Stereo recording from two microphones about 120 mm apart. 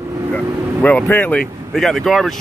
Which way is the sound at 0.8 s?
15° left (ahead or behind).